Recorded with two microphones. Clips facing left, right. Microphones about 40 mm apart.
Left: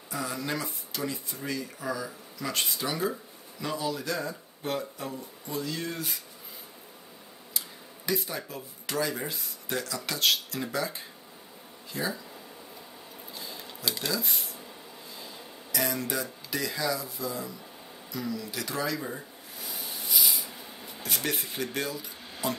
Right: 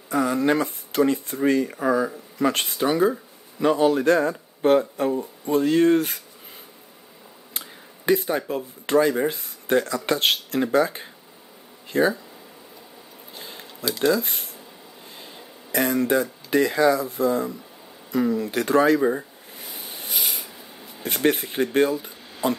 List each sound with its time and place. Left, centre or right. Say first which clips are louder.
0.1 s speech: right 12 dB; right
7.5 s speech: right 3 dB; right
13.4 s a sound: right 3 dB; right
14.1 s speech: right 7 dB; right
15.7 s speech: right 10 dB; right
18.1 s a sound: right 12 dB; right
21.0 s speech: right 10 dB; right